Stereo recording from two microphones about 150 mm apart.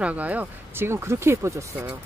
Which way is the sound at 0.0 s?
10° right (ahead or behind).